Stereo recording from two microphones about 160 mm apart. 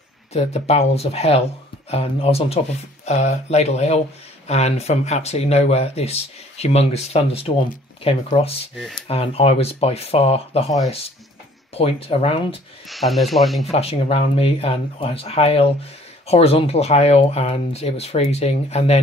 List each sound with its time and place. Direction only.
0.3 s speech: 40° left (ahead or behind)
8.7 s speech: centre (ahead or behind)
9.0 s speech: 40° left (ahead or behind)
11.7 s speech: 40° left (ahead or behind)
12.8 s speech: centre (ahead or behind)
13.7 s speech: 40° left (ahead or behind)